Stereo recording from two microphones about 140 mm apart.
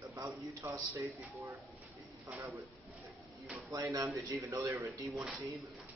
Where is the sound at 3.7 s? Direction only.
25° right (ahead or behind).